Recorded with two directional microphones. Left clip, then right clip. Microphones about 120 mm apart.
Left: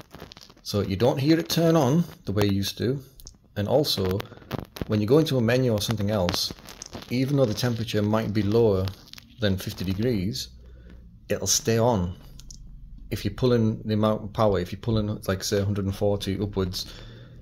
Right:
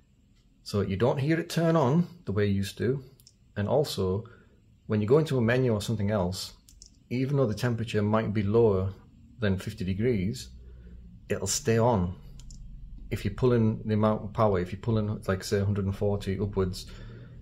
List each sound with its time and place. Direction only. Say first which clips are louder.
0.7 s speech: left 3 dB; 30° left (ahead or behind)
13.1 s speech: left 3 dB; 25° left (ahead or behind)